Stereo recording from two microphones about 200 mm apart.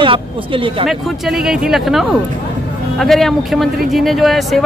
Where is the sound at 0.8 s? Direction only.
Centre (ahead or behind).